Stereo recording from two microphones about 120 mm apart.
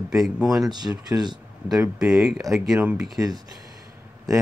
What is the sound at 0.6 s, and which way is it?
Speech, 35° right (ahead or behind).